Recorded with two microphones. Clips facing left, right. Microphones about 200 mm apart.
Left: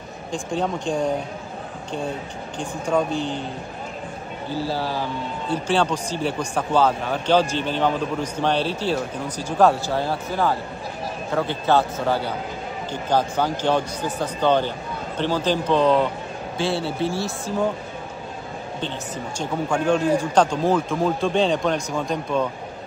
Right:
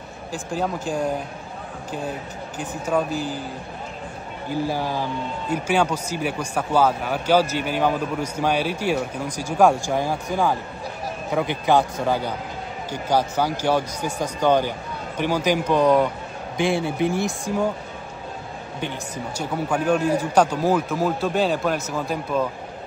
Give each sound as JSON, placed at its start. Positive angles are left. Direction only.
{"t": 0.3, "sound": "speech", "side_deg": -5}
{"t": 2.9, "sound": "speech", "side_deg": -5}
{"t": 4.5, "sound": "speech", "side_deg": -15}
{"t": 18.8, "sound": "speech", "side_deg": -10}